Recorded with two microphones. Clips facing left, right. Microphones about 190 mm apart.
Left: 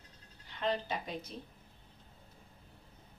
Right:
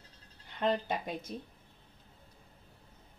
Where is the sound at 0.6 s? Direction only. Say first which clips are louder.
Right 3 dB; 55° right (ahead or behind).